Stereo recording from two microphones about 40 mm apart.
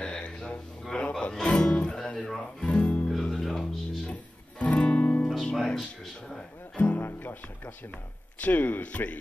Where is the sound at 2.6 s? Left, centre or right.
Left.